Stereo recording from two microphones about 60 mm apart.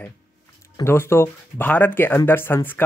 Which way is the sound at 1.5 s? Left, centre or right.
Left.